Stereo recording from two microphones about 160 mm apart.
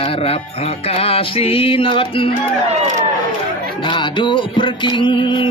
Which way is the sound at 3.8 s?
30° left (ahead or behind).